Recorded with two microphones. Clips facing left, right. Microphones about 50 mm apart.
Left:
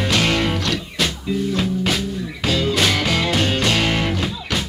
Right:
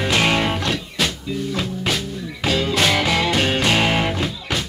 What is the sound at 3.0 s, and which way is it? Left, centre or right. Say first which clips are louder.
Music: right 1 dB; centre.